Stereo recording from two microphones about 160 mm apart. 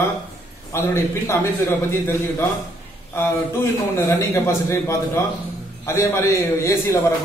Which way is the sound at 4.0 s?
15° left (ahead or behind).